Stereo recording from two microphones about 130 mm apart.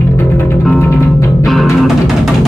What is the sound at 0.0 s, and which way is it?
Music, 20° left (ahead or behind).